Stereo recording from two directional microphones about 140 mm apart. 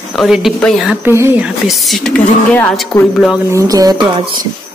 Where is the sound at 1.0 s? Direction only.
15° right (ahead or behind).